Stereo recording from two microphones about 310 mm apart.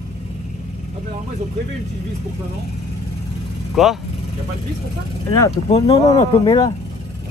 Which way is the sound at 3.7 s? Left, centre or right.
Centre.